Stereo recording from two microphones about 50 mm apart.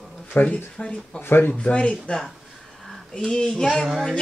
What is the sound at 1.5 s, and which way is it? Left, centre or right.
Speech, left.